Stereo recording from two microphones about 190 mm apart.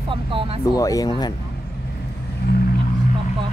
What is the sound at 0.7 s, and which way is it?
Speech, 20° left (ahead or behind).